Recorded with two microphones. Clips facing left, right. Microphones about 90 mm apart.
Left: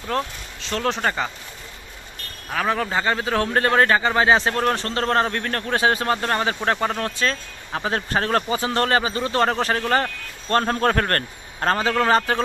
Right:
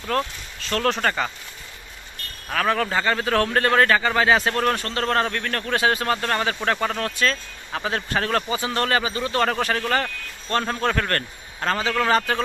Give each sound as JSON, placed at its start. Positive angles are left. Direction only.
{"t": 0.1, "sound": "a man's voice", "side_deg": 20}
{"t": 2.5, "sound": "a man's voice", "side_deg": 15}